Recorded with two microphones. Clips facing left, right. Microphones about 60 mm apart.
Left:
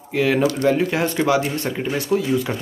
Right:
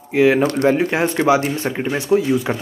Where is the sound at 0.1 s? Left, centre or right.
Centre.